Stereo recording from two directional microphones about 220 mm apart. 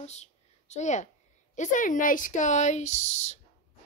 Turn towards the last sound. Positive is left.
turn(degrees=30)  # may be behind; listen again after turning